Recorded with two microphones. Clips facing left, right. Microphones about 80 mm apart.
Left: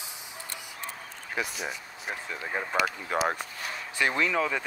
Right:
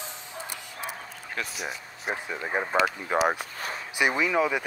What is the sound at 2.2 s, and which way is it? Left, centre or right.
Speech, right.